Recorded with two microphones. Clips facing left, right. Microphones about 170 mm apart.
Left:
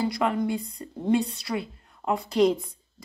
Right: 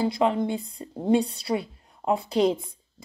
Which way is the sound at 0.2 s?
25° right (ahead or behind).